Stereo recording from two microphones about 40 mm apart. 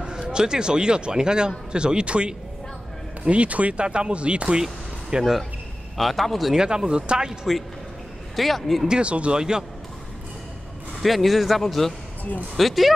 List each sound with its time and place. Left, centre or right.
0.0 s speech: right
3.3 s speech: right
5.9 s speech: centre
6.5 s speech: centre
8.4 s speech: centre
8.8 s speech: right
9.1 s speech: right
9.4 s speech: centre
11.0 s speech: centre